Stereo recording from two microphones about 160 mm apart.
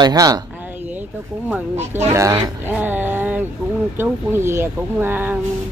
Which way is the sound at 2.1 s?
20° right (ahead or behind).